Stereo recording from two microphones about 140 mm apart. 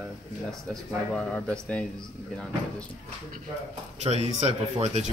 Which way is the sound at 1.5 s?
10° left (ahead or behind).